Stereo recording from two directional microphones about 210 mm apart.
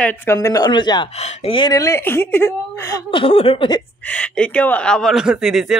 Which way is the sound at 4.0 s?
5° left (ahead or behind).